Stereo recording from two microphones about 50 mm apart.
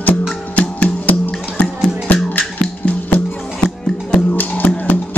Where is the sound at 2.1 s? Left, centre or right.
Left.